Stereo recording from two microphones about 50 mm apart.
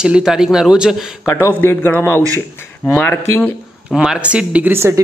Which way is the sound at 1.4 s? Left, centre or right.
Left.